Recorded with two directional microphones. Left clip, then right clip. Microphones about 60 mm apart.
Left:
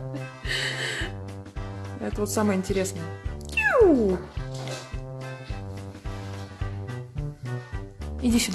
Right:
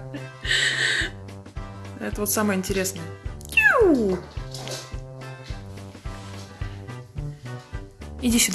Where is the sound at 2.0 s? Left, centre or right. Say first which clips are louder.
Right 1 dB; centre.